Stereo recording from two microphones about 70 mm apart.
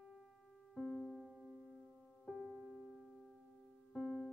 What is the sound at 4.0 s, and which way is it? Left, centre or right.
Music, centre.